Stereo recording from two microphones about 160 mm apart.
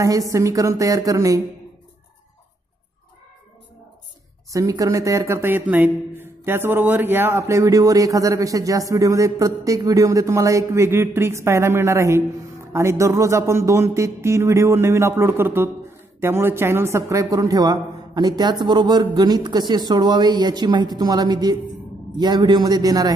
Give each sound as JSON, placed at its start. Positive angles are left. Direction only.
{"t": 0.3, "sound": "speech", "side_deg": -20}
{"t": 4.5, "sound": "speech", "side_deg": -20}